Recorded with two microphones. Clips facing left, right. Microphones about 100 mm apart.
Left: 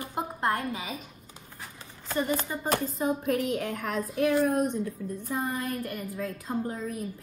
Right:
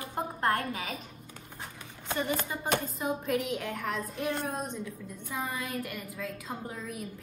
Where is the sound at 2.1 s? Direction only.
30° left (ahead or behind).